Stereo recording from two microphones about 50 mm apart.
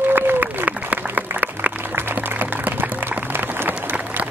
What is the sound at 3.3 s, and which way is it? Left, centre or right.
Applause, right.